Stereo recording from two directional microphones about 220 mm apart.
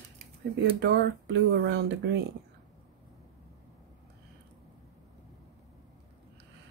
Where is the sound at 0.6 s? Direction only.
50° right (ahead or behind).